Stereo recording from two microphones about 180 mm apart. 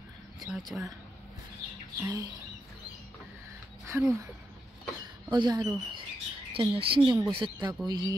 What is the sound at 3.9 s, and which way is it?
Bird, 10° right (ahead or behind).